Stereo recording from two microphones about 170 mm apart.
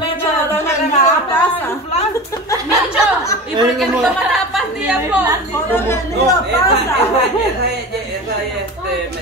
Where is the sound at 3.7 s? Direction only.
Centre (ahead or behind).